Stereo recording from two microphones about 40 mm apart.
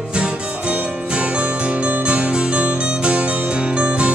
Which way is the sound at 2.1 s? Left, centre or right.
Right.